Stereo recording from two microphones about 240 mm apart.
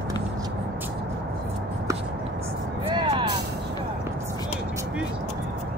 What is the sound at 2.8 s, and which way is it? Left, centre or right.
Vehicle, centre.